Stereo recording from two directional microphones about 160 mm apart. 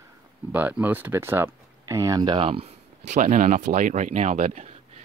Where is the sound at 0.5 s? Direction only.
10° right (ahead or behind).